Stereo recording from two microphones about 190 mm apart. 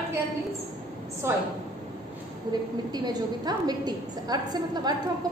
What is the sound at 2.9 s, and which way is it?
A woman's voice, 20° right (ahead or behind).